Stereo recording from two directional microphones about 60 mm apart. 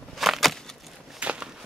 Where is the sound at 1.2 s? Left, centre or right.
Centre.